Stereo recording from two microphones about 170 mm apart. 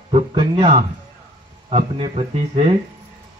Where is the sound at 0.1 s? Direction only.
30° right (ahead or behind).